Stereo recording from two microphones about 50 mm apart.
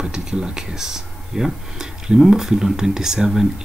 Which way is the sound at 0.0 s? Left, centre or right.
Centre.